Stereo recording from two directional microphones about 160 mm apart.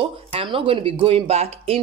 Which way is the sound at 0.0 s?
35° right (ahead or behind).